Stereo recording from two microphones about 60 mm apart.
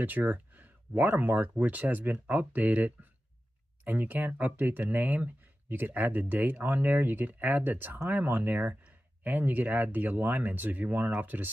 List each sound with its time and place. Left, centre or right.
0.0 s speech: right